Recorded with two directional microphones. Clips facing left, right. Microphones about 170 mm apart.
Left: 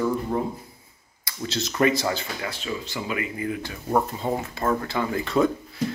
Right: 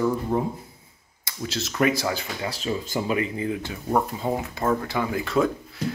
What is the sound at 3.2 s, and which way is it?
Speech, 25° right (ahead or behind).